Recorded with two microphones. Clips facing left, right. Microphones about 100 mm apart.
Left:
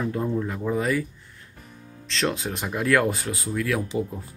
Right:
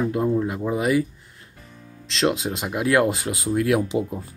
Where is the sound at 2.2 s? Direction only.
20° right (ahead or behind).